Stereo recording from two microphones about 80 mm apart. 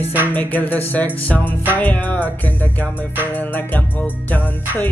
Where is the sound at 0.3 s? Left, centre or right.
Left.